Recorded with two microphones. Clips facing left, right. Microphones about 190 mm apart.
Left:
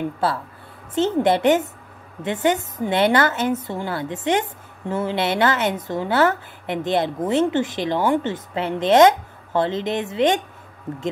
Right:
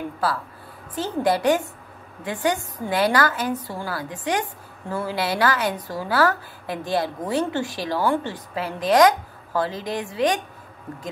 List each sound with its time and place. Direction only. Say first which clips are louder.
0.2 s a woman's voice: left 2 dB; 25° left (ahead or behind)